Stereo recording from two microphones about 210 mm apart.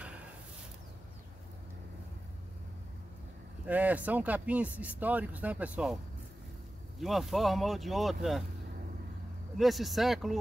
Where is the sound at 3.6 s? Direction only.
5° right (ahead or behind).